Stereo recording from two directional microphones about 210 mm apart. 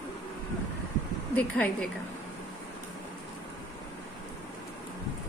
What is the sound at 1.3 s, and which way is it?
Speech, 5° left (ahead or behind).